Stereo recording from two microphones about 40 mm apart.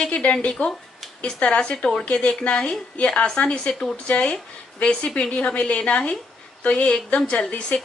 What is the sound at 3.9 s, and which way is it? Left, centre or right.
A woman's voice, left.